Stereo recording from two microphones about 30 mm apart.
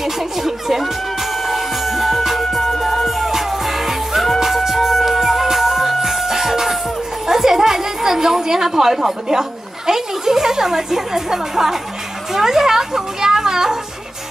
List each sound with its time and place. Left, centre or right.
0.0 s speech: centre
1.4 s music: centre
7.2 s a sound: centre
8.6 s a child's voice: centre